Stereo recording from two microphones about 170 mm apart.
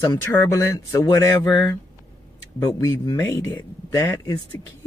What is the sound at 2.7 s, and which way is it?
A man's voice, 20° left (ahead or behind).